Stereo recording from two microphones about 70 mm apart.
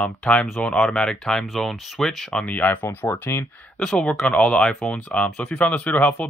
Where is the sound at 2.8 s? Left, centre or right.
Left.